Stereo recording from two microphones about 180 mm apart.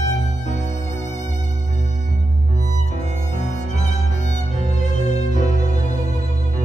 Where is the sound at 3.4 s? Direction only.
40° left (ahead or behind).